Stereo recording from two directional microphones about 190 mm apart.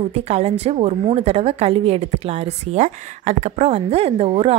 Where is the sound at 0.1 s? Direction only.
35° right (ahead or behind).